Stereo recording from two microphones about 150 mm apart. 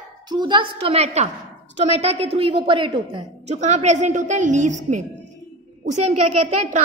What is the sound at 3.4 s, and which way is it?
A woman's voice, 50° right (ahead or behind).